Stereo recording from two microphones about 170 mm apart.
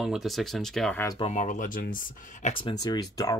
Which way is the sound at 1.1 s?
40° left (ahead or behind).